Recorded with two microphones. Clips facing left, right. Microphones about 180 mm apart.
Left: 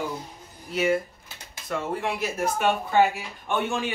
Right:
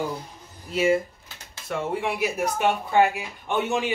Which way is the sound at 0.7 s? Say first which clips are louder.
Right 2 dB; 25° right (ahead or behind).